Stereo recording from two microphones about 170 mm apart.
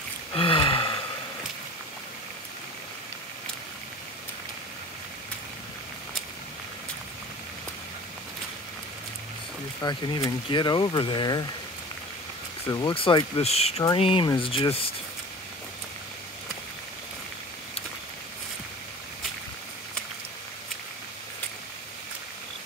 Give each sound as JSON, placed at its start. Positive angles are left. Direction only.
{"t": 0.3, "sound": "a sound", "side_deg": 30}
{"t": 9.8, "sound": "speech", "side_deg": 25}
{"t": 12.6, "sound": "speech", "side_deg": 25}